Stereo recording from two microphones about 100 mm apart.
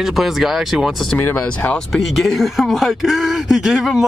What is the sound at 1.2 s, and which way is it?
Speech, 15° left (ahead or behind).